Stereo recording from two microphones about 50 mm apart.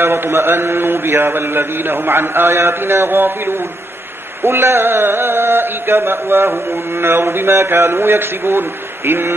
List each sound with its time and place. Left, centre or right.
0.0 s mantra: right